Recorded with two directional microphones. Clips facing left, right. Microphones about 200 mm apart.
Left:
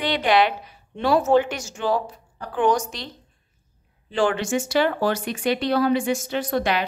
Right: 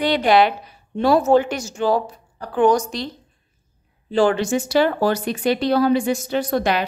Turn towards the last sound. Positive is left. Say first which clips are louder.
# right 3 dB
turn(degrees=-40)  # may be behind; listen again after turning